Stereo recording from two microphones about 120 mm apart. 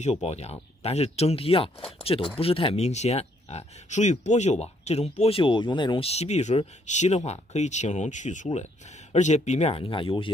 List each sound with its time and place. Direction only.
0.0 s speech: 70° left (ahead or behind)
5.4 s speech: 45° left (ahead or behind)
6.0 s speech: 65° left (ahead or behind); by 10.3 s 45° left (ahead or behind)